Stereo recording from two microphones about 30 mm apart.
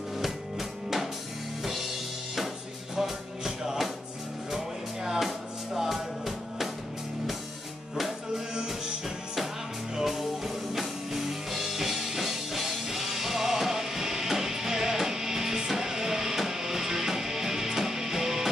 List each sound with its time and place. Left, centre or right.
0.2 s drum: centre
1.6 s music: centre
3.0 s music: centre
8.5 s music: right
10.0 s music: centre